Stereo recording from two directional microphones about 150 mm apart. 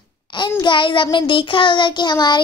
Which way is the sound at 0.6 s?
35° left (ahead or behind).